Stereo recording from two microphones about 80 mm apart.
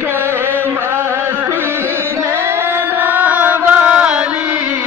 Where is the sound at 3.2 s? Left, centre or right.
Centre.